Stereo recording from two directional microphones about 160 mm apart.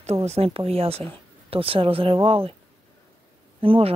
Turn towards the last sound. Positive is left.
turn(degrees=-35)  # may be behind; listen again after turning